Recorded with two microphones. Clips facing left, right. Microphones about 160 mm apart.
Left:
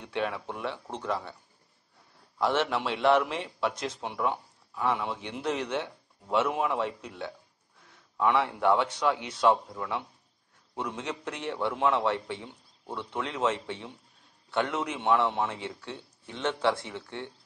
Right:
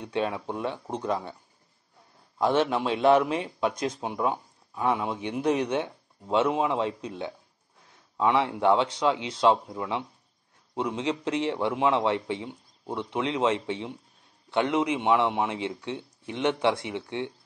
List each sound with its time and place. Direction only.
0.0 s speech: 15° right (ahead or behind)
2.3 s a man's voice: 15° right (ahead or behind)